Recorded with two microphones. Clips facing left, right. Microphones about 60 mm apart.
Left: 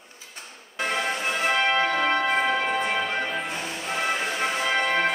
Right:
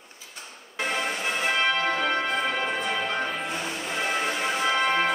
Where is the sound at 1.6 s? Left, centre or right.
Left.